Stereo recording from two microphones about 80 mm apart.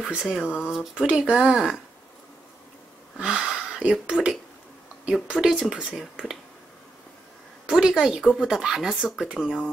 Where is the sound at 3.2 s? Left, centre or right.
Centre.